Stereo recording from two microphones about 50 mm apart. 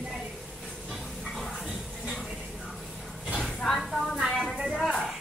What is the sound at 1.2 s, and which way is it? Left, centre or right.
Music, centre.